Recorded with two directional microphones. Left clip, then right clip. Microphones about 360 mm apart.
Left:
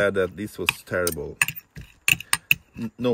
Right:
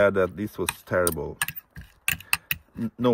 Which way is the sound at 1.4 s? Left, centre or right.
Centre.